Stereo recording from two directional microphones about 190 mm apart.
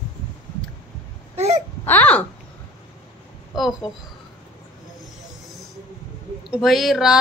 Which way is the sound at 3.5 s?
Centre (ahead or behind).